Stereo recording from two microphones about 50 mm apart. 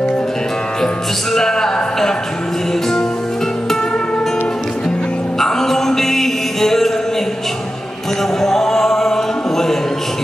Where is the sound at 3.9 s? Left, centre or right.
Left.